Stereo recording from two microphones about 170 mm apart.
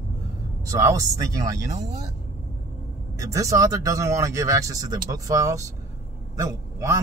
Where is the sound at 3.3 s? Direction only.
20° right (ahead or behind).